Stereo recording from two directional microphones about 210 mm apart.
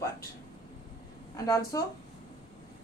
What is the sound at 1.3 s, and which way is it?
Speech, 15° left (ahead or behind).